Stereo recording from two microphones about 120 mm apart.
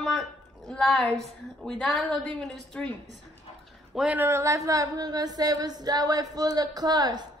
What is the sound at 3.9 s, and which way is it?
A woman's voice, 10° right (ahead or behind).